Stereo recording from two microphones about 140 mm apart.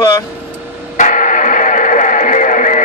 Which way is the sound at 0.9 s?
60° left (ahead or behind).